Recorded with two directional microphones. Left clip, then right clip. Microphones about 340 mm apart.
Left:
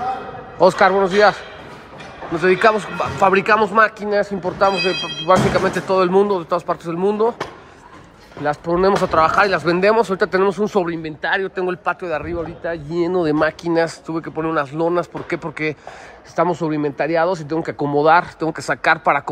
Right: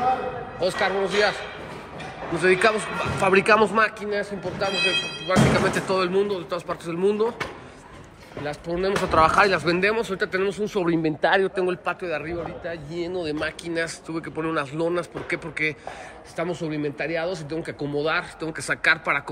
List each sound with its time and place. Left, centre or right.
0.6 s a man's voice: centre
8.5 s a man's voice: centre
9.1 s a man's voice: centre
10.8 s a man's voice: centre
12.6 s a man's voice: left